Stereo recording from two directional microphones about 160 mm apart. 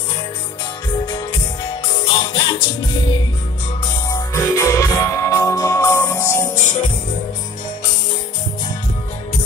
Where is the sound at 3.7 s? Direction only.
20° left (ahead or behind).